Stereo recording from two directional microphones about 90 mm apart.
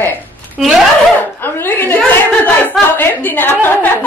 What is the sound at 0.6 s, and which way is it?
Speech, 5° right (ahead or behind).